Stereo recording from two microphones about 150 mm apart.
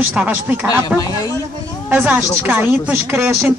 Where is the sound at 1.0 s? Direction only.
20° left (ahead or behind).